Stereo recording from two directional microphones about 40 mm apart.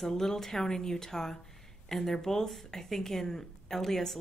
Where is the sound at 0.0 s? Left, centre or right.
Centre.